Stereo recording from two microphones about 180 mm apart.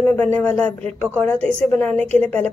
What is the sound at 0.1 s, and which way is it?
A woman's voice, 10° left (ahead or behind).